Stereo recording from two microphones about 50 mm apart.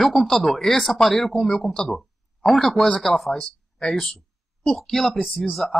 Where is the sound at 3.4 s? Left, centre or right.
Centre.